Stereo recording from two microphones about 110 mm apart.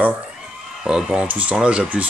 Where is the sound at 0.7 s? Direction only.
5° right (ahead or behind).